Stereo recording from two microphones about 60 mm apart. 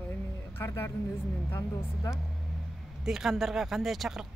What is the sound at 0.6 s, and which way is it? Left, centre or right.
Speech, left.